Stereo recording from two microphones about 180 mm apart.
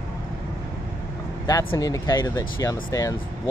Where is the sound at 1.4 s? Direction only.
15° left (ahead or behind).